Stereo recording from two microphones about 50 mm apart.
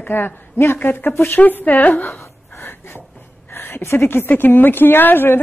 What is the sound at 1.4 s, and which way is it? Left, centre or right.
Speech, left.